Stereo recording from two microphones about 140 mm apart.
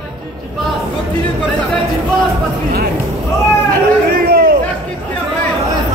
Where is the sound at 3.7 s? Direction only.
90° right.